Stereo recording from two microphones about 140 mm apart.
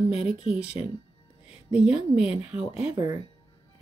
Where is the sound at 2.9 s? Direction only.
25° right (ahead or behind).